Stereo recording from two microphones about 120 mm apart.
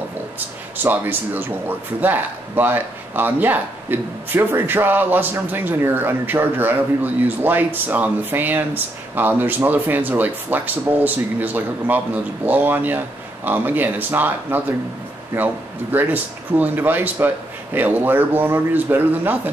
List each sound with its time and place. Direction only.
0.8 s a man's voice: 15° right (ahead or behind)